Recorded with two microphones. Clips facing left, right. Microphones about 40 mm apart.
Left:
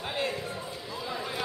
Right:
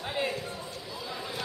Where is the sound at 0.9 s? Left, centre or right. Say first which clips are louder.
Left 4 dB; centre.